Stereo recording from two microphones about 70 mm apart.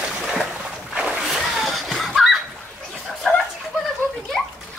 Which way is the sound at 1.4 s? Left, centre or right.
Centre.